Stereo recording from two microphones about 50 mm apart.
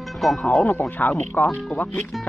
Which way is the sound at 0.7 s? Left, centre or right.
Left.